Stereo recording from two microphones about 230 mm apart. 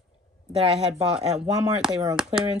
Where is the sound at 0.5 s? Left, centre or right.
Right.